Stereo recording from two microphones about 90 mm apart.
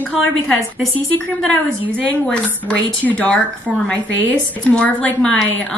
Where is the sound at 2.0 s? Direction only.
15° left (ahead or behind).